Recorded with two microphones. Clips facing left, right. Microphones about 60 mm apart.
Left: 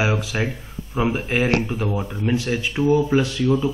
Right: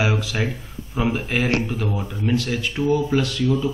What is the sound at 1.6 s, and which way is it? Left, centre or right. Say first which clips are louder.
Speech: left 1 dB; left.